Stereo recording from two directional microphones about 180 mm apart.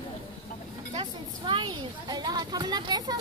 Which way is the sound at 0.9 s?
25° right (ahead or behind).